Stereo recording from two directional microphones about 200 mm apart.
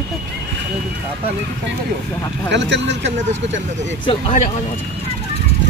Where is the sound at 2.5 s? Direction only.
60° right (ahead or behind).